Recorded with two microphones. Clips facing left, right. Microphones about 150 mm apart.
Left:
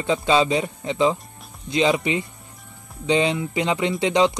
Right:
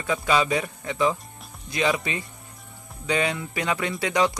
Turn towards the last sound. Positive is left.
turn(degrees=20)  # may be behind; listen again after turning